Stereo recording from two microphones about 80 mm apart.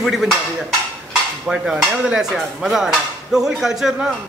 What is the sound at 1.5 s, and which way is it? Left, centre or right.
Dishes, centre.